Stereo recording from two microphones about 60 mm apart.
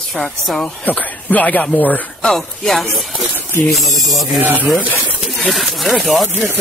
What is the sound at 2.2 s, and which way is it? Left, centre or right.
Speech, centre.